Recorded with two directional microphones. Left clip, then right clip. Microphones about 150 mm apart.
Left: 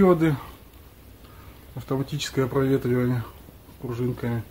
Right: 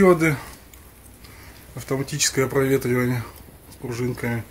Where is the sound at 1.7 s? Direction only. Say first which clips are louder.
Right 3 dB; centre (ahead or behind).